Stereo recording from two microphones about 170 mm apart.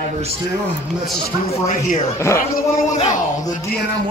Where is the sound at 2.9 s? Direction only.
45° left (ahead or behind).